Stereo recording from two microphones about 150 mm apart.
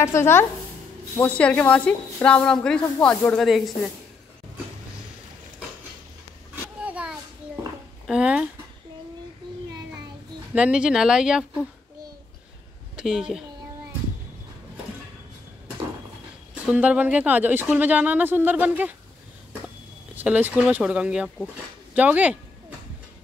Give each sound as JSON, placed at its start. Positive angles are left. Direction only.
{"t": 0.0, "sound": "speech", "side_deg": 20}
{"t": 6.5, "sound": "a sound", "side_deg": -10}
{"t": 8.1, "sound": "speech", "side_deg": -5}
{"t": 10.5, "sound": "speech", "side_deg": -5}
{"t": 12.9, "sound": "a woman's voice", "side_deg": -5}
{"t": 16.6, "sound": "speech", "side_deg": -10}
{"t": 20.2, "sound": "speech", "side_deg": -10}